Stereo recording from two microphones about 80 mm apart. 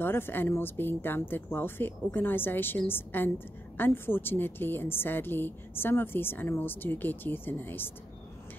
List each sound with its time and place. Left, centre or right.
0.0 s a woman's voice: left